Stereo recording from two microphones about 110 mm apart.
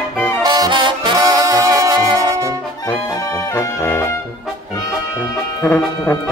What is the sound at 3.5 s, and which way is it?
Brass instrument, 20° left (ahead or behind).